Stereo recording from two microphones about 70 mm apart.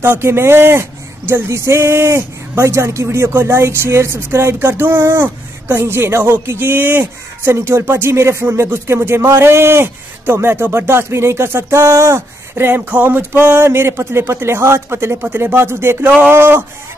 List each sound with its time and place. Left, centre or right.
0.0 s speech: right